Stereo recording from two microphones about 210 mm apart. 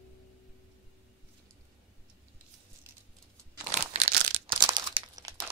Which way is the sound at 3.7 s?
30° right (ahead or behind).